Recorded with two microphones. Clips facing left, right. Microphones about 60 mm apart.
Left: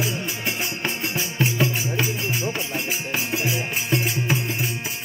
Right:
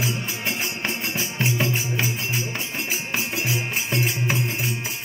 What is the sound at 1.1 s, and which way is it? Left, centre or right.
Music, right.